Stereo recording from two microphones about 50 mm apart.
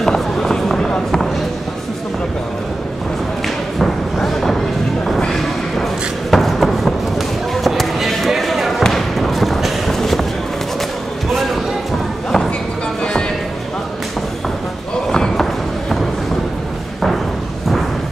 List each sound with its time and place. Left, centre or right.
0.0 s run: centre
3.4 s thump: centre
6.3 s basketball bounce: centre
8.8 s fireworks: centre
15.0 s slam: centre